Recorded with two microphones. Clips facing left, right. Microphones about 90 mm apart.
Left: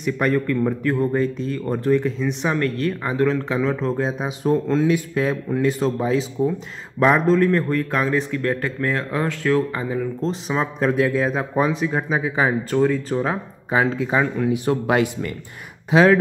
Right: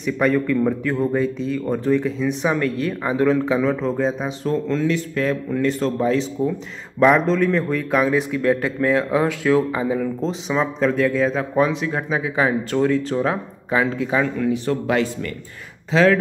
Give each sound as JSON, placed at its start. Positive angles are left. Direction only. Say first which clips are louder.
{"t": 0.0, "sound": "a man's voice", "louder": "right 1 dB", "side_deg": 0}
{"t": 9.9, "sound": "speech", "louder": "right 1 dB", "side_deg": 5}